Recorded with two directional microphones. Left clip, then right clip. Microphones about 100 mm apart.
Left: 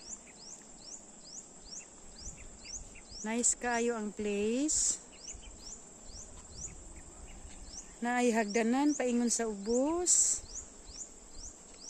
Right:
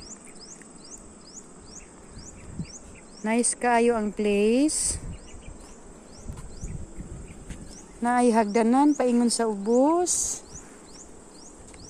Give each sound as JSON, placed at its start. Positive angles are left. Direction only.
{"t": 3.3, "sound": "speech", "side_deg": -5}
{"t": 8.0, "sound": "speech", "side_deg": 25}